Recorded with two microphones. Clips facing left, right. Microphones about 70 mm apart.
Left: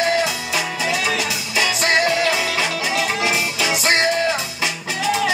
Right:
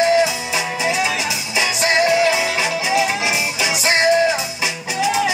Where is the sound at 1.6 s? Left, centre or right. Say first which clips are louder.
Right 1 dB; centre.